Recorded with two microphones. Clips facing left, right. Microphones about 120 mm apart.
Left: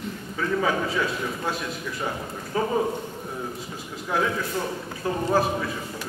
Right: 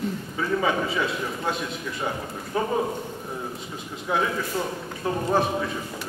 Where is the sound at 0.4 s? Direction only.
Centre (ahead or behind).